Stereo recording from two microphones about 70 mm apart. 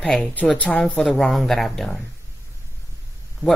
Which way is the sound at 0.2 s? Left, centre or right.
Left.